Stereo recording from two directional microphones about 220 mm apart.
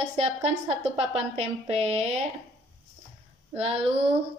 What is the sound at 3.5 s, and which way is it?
Speech, 25° right (ahead or behind).